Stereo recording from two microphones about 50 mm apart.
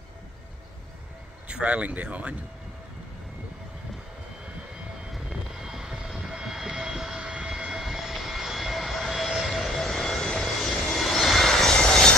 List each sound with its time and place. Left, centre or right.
1.5 s speech: right
5.1 s vehicle: centre